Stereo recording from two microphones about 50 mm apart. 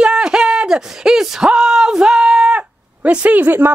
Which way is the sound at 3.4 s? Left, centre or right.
Right.